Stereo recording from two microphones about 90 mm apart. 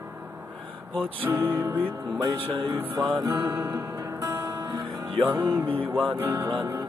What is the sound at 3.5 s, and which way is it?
Music, 40° right (ahead or behind).